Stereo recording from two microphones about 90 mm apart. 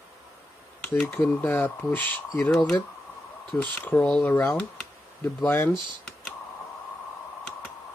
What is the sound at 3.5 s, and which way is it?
Speech, 25° left (ahead or behind).